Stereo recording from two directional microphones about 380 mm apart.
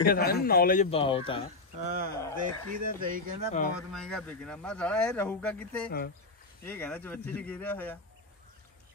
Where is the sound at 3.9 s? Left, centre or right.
Centre.